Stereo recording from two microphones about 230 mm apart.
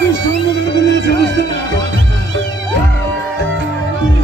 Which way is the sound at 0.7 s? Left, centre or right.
Right.